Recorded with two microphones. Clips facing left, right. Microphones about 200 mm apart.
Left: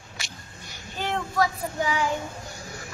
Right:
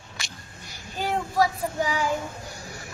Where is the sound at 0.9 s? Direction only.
10° right (ahead or behind).